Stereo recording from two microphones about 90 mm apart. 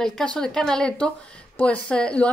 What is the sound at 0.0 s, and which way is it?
A woman's voice, 5° left (ahead or behind).